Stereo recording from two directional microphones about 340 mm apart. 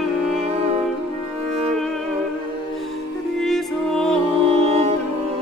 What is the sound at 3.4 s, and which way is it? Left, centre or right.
Music, centre.